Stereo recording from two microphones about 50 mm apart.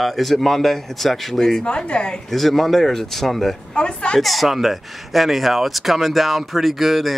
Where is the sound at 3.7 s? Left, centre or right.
Centre.